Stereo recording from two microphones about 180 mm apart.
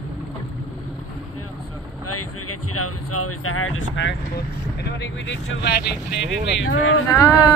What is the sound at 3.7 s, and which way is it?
Speech, 85° left.